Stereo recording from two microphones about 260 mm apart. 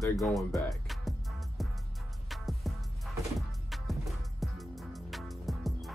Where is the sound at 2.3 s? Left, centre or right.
Centre.